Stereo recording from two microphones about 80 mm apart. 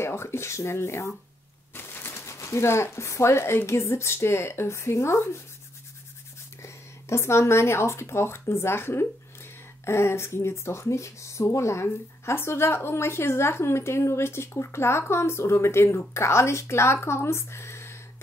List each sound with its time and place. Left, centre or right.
0.0 s speech: left
6.6 s speech: left